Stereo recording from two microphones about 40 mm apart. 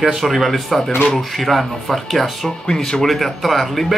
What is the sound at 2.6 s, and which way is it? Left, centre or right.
Speech, centre.